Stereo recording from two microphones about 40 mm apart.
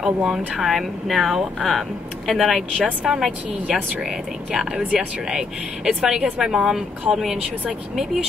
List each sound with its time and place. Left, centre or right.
0.0 s speech: centre
3.0 s speech: centre
4.5 s speech: right